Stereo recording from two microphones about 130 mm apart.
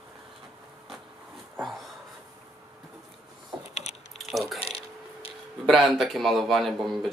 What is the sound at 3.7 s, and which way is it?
Gears, 55° left (ahead or behind).